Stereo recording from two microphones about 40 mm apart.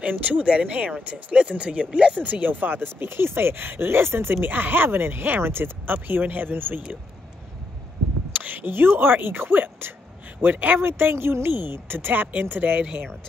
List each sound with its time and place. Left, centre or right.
0.0 s speech: right
0.5 s speech: right
2.2 s speech: right
4.4 s speech: right
8.3 s speech: right
10.8 s speech: right
12.1 s speech: right